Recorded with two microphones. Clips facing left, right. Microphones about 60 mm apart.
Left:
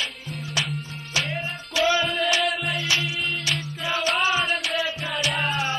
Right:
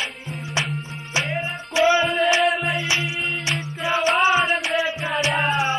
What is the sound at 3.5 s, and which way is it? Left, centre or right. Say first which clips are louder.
Music: right 4 dB; right.